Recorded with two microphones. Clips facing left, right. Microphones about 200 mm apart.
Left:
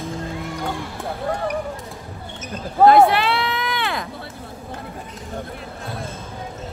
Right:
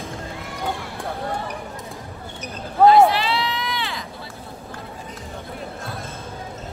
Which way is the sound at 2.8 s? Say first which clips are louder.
Left 1 dB; 55° left (ahead or behind).